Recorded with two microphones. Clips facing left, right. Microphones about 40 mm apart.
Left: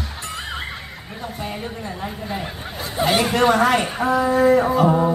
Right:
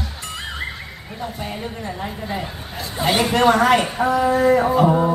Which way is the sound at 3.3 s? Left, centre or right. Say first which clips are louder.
Right 3 dB; centre.